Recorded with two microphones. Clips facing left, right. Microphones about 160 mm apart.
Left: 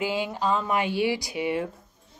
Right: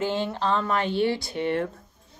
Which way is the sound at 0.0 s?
10° left (ahead or behind).